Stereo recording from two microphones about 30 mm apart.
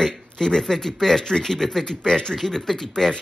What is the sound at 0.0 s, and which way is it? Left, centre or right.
Speech, centre.